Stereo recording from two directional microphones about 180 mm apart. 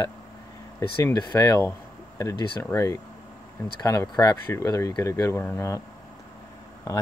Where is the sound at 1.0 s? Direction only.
20° left (ahead or behind).